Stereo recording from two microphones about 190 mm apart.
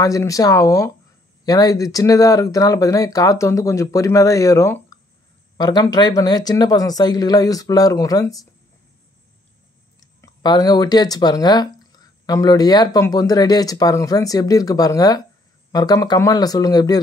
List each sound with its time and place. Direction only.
0.0 s speech: 15° left (ahead or behind)
9.9 s speech: 20° left (ahead or behind)